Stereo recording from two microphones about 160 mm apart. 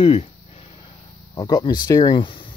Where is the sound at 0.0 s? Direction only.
40° left (ahead or behind).